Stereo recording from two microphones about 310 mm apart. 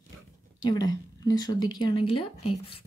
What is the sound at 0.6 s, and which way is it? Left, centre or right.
Speech, centre.